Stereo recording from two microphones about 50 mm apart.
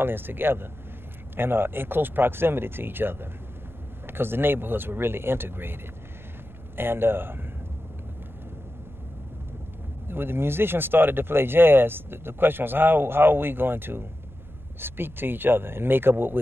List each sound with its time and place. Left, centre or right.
0.0 s speech: right
6.8 s speech: right
10.0 s speech: right